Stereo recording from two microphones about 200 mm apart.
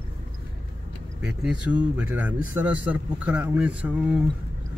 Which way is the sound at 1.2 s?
5° right (ahead or behind).